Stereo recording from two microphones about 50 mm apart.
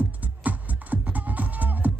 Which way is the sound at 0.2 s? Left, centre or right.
Right.